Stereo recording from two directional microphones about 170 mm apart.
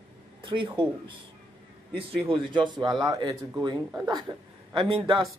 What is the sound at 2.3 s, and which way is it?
Speech, 30° right (ahead or behind).